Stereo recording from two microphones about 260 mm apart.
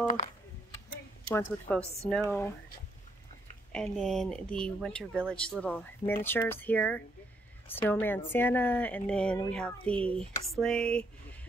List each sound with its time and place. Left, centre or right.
0.0 s speech: left
1.3 s a woman's voice: centre
3.7 s a woman's voice: centre